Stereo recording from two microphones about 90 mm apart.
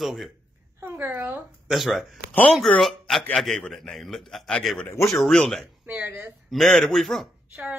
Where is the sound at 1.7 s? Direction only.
Centre (ahead or behind).